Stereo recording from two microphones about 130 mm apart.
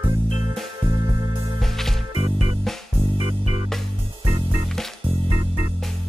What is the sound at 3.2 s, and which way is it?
Music, 40° right (ahead or behind).